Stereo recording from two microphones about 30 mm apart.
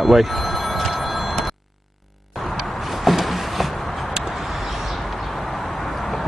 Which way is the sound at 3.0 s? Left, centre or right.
Centre.